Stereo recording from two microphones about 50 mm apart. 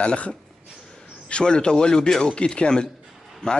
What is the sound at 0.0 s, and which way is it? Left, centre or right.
A man's voice, left.